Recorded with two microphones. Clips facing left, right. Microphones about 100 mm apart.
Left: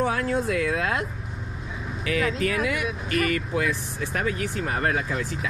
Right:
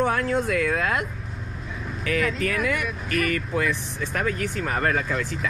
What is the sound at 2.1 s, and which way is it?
Speech, 35° left (ahead or behind).